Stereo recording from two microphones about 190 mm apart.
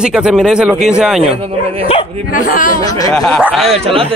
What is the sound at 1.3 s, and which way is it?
Speech, 30° right (ahead or behind).